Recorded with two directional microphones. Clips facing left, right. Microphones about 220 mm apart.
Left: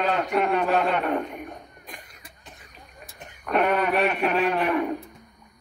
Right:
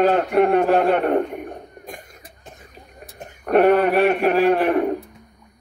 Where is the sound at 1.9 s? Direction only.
45° right (ahead or behind).